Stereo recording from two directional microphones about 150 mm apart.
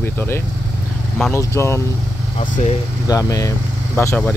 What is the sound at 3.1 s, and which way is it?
Speech, 25° left (ahead or behind).